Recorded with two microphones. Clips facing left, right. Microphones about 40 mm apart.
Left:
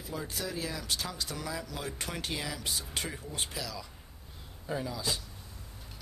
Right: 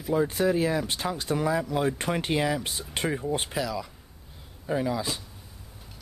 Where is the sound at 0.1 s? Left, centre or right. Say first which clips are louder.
Right 14 dB; right.